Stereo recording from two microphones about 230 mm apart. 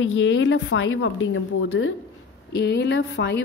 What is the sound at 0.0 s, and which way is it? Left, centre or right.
A woman's voice, left.